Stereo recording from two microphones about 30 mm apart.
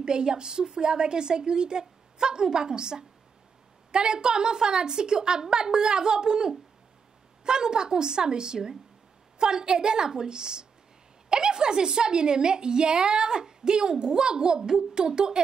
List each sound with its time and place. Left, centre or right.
0.0 s a woman's voice: right